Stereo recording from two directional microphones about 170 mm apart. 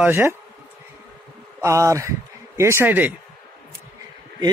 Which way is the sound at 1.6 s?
15° right (ahead or behind).